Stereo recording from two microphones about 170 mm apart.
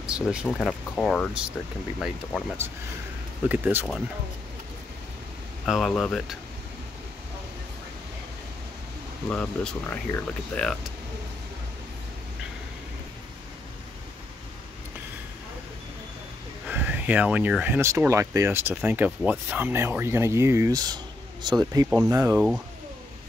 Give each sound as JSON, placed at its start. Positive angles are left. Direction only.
{"t": 0.0, "sound": "speech", "side_deg": -5}
{"t": 3.4, "sound": "speech", "side_deg": -10}
{"t": 5.7, "sound": "speech", "side_deg": 0}
{"t": 9.3, "sound": "speech", "side_deg": 5}
{"t": 16.6, "sound": "speech", "side_deg": -10}